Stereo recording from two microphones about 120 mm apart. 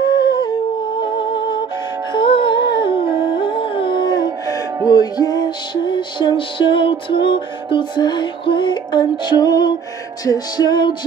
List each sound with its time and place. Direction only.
0.0 s humming: 35° left (ahead or behind)
2.1 s humming: 45° left (ahead or behind)
4.8 s music: 35° left (ahead or behind)